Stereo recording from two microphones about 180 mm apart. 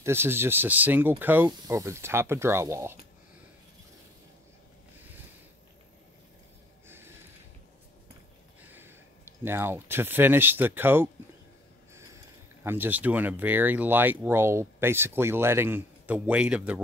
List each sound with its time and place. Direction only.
0.0 s speech: 15° right (ahead or behind)
9.4 s speech: 10° right (ahead or behind)
12.6 s speech: 10° right (ahead or behind)